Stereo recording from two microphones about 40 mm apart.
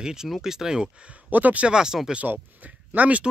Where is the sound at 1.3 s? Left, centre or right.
Right.